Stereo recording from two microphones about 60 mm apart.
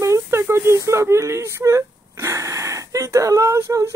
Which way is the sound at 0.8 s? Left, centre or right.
Right.